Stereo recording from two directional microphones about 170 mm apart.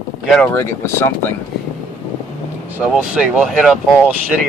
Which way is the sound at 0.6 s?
15° left (ahead or behind).